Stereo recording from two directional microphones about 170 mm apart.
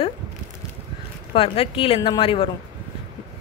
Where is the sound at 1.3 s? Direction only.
35° left (ahead or behind).